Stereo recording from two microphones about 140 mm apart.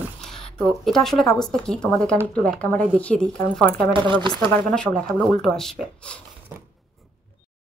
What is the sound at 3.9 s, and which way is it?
Speech, 35° right (ahead or behind).